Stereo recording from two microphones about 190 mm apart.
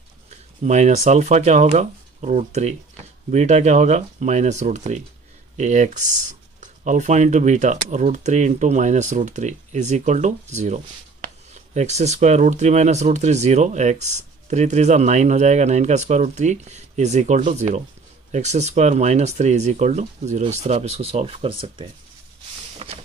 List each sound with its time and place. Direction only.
0.7 s speech: 35° right (ahead or behind)
22.8 s vehicle: 35° right (ahead or behind)